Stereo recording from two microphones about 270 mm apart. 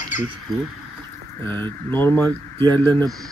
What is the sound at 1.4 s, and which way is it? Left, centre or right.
Speech, centre.